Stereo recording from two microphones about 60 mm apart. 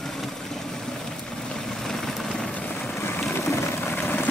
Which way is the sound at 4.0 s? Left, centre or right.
Left.